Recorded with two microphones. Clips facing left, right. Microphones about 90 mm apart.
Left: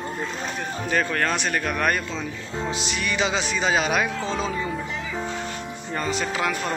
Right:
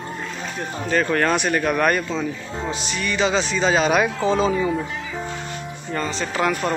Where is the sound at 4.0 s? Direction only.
10° right (ahead or behind).